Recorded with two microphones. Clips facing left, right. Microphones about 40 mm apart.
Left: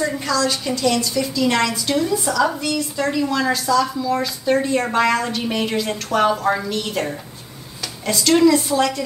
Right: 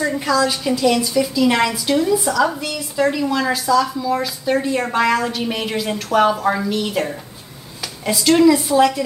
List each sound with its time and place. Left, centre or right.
0.0 s a woman's voice: centre